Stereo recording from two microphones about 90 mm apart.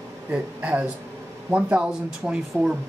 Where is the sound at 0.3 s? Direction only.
15° right (ahead or behind).